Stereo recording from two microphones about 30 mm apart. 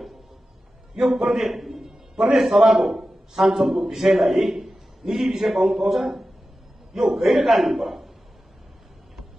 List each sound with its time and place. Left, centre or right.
0.9 s a man's voice: right
1.3 s a man's voice: centre